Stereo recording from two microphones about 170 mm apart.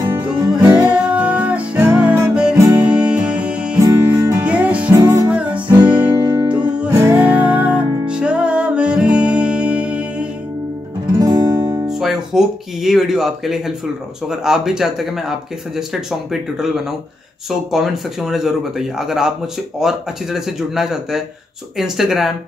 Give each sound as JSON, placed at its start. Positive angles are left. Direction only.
{"t": 0.0, "sound": "music", "side_deg": -20}
{"t": 0.7, "sound": "music", "side_deg": -5}
{"t": 5.0, "sound": "music", "side_deg": -20}
{"t": 5.3, "sound": "music", "side_deg": -5}
{"t": 6.1, "sound": "music", "side_deg": -20}
{"t": 11.1, "sound": "music", "side_deg": -20}
{"t": 11.9, "sound": "speech", "side_deg": 0}